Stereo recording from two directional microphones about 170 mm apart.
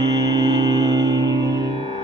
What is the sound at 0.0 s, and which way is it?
Music, 20° right (ahead or behind).